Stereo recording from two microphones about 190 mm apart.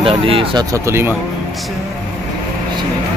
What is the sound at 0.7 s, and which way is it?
Speech, 15° right (ahead or behind).